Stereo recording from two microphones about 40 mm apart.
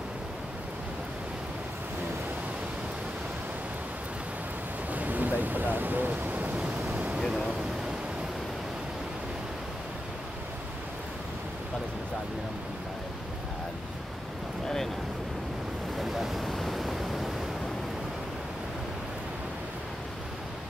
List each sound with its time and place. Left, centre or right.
4.9 s waves: right
16.0 s waves: centre
16.4 s pink noise: centre